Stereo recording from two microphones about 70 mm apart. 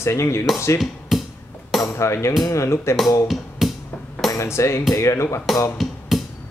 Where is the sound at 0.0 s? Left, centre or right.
Left.